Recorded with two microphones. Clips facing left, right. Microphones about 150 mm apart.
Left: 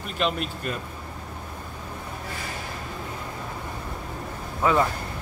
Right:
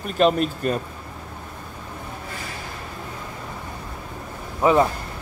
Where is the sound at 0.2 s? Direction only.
40° right (ahead or behind).